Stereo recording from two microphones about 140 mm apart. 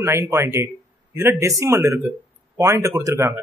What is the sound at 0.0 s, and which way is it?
A man's voice, 20° right (ahead or behind).